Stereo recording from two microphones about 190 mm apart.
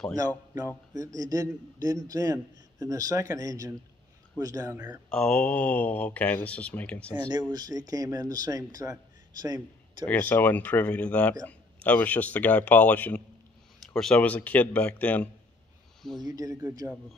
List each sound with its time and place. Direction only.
0.9 s a man's voice: 20° right (ahead or behind)
5.1 s speech: 5° left (ahead or behind)
7.2 s a man's voice: 25° right (ahead or behind)
10.0 s speech: 10° left (ahead or behind)
16.3 s speech: 20° right (ahead or behind)